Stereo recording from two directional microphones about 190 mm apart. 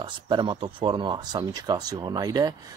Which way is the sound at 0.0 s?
25° right (ahead or behind).